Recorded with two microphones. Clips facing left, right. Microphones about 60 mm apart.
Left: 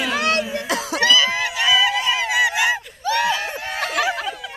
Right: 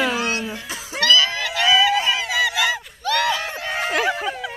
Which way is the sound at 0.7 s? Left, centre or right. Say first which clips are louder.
Left 9 dB; left.